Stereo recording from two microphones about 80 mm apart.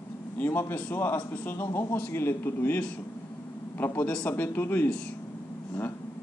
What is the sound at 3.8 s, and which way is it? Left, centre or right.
Speech, left.